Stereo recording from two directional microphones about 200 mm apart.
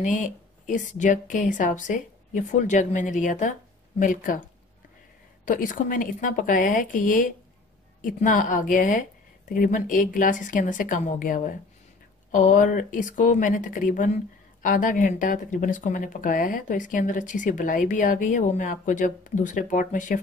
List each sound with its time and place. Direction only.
0.0 s speech: 40° left (ahead or behind)
5.4 s speech: 40° left (ahead or behind)